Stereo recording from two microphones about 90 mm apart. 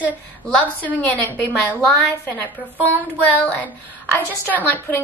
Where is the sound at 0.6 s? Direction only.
15° left (ahead or behind).